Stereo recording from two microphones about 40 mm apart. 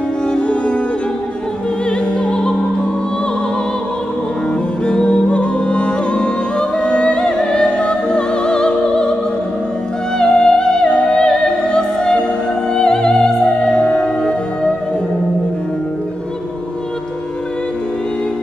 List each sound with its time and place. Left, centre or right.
0.3 s music: left
1.9 s opera: left
4.8 s music: left
10.1 s music: centre
12.7 s opera: centre